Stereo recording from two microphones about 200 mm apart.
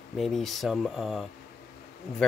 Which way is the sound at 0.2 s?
Centre (ahead or behind).